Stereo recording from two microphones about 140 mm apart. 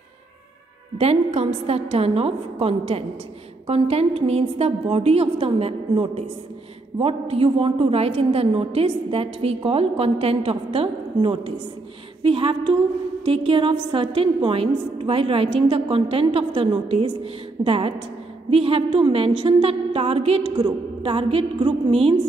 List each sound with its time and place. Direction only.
0.9 s a woman's voice: 50° right (ahead or behind)